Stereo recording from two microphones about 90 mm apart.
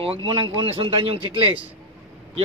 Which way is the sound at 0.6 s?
90° right.